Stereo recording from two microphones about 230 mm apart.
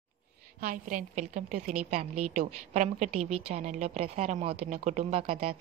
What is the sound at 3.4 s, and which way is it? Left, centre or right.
A woman's voice, right.